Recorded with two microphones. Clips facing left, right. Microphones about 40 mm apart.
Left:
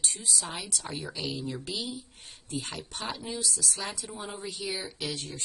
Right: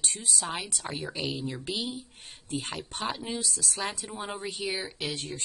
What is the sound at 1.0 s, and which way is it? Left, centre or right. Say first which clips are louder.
Speech: right 3 dB; right.